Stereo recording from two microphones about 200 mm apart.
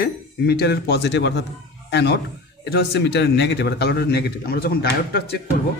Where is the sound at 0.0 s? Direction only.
55° left (ahead or behind).